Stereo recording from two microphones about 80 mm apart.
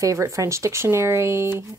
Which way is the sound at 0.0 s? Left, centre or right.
Right.